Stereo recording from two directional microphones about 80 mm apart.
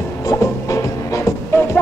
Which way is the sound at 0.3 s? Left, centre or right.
Left.